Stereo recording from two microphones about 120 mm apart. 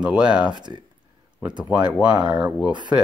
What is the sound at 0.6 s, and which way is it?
Speech, 40° right (ahead or behind).